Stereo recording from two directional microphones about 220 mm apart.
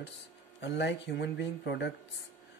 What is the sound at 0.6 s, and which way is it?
Speech, 50° left (ahead or behind).